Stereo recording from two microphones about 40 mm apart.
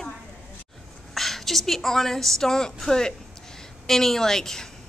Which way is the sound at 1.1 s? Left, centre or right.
Centre.